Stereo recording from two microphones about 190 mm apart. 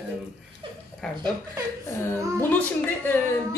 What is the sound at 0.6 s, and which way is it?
Speech, 25° right (ahead or behind).